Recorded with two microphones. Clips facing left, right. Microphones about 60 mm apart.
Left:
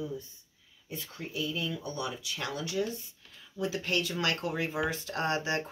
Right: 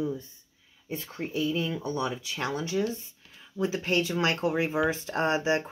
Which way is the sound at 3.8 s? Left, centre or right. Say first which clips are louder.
Right 5 dB; right.